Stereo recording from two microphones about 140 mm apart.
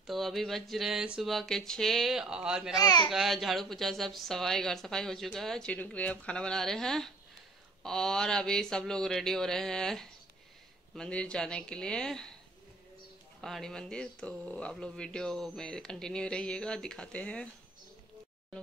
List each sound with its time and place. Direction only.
0.0 s speech: centre (ahead or behind)
2.8 s speech: 30° left (ahead or behind)
3.1 s speech: centre (ahead or behind)
13.4 s speech: centre (ahead or behind)